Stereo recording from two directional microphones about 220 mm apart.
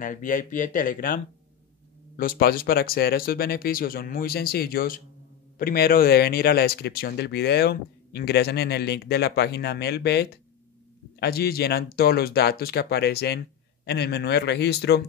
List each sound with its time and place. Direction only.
0.0 s speech: 35° left (ahead or behind)